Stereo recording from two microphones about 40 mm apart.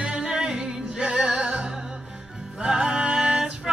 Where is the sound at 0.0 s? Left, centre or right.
Centre.